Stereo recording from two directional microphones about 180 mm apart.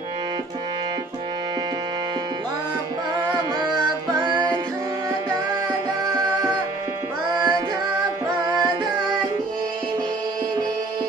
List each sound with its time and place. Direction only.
4.1 s music: 25° right (ahead or behind)
7.3 s music: 20° right (ahead or behind)
8.4 s tabla: 20° right (ahead or behind)